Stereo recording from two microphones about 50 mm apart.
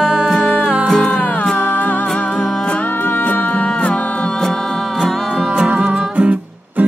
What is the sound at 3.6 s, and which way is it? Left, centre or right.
Music, centre.